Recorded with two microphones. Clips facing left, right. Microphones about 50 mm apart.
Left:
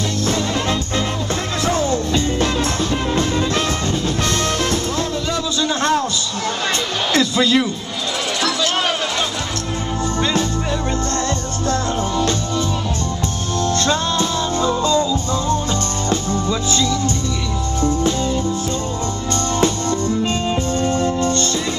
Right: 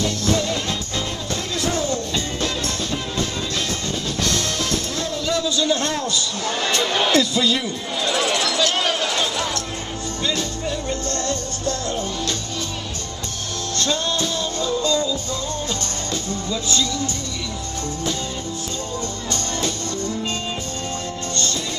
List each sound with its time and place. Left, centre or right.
2.9 s music: left
7.1 s crowd: left
8.5 s a sound: centre
13.7 s music: left
20.8 s music: left